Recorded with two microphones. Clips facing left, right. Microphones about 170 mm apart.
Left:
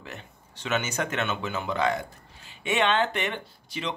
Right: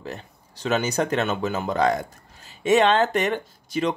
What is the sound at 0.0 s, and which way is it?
Speech, 35° right (ahead or behind).